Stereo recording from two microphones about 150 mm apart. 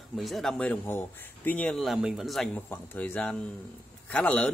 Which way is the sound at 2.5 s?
15° left (ahead or behind).